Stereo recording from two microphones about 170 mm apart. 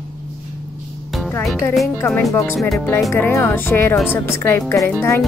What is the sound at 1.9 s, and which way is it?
Speech, 10° left (ahead or behind).